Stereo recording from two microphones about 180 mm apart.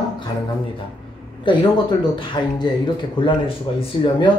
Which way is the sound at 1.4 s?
25° left (ahead or behind).